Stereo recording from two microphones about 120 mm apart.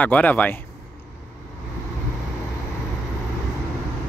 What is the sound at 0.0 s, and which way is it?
Speech, 15° left (ahead or behind).